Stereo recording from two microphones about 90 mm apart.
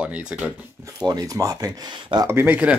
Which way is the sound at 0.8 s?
45° right (ahead or behind).